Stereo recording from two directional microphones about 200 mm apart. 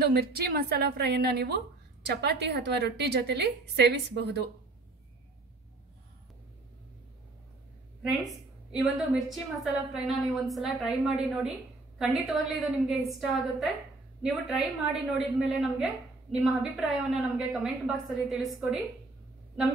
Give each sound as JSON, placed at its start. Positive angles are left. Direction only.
{"t": 0.0, "sound": "a woman's voice", "side_deg": -50}
{"t": 8.0, "sound": "a woman's voice", "side_deg": 0}